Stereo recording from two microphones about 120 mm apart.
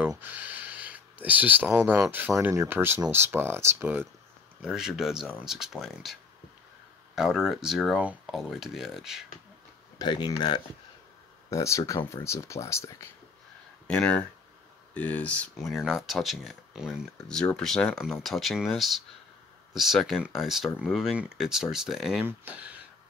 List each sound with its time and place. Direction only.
0.2 s speech: 15° right (ahead or behind)
4.6 s speech: 5° right (ahead or behind)
7.2 s speech: 5° right (ahead or behind)
9.9 s speech: 40° left (ahead or behind)
11.5 s speech: 25° left (ahead or behind)
13.8 s speech: 10° left (ahead or behind)
17.3 s speech: 5° left (ahead or behind)
22.2 s speech: 15° right (ahead or behind)